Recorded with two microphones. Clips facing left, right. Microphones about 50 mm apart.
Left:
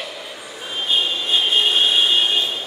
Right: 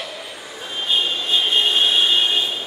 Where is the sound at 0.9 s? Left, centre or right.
Centre.